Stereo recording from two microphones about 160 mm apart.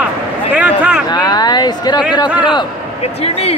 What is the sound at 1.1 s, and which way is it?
Speech, 25° left (ahead or behind).